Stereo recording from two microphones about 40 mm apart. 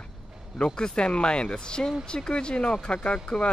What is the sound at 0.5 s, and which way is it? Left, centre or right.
Speech, left.